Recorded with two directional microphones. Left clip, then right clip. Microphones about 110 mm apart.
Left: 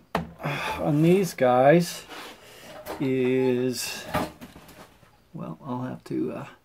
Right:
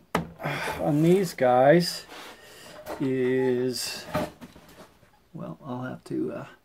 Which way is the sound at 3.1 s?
20° left (ahead or behind).